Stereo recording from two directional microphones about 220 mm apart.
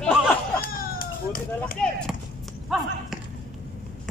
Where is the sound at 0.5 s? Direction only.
40° left (ahead or behind).